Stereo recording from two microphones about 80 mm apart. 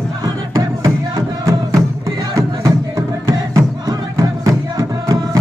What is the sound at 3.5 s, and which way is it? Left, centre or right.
Music, right.